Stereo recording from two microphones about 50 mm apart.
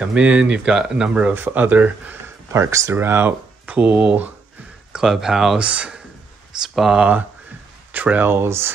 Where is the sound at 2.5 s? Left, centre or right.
Right.